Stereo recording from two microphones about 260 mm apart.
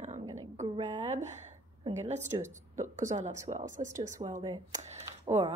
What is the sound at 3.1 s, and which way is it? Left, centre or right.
A woman's voice, centre.